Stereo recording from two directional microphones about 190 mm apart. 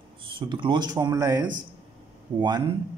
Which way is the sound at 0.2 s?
25° right (ahead or behind).